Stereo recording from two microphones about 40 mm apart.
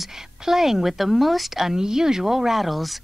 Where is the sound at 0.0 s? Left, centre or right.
Centre.